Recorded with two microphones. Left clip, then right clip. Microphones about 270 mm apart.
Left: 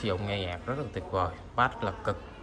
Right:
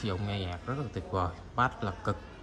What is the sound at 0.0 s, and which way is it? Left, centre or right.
A man's voice, centre.